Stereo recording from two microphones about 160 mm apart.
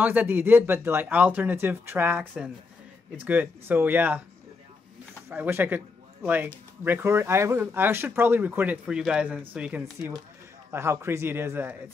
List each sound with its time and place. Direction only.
0.0 s speech: 10° right (ahead or behind)
5.3 s speech: 10° right (ahead or behind)